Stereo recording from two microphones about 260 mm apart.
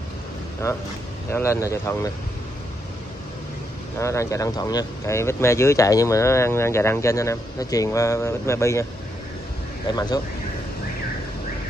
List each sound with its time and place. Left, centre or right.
1.3 s speech: centre
4.0 s speech: centre
9.8 s speech: centre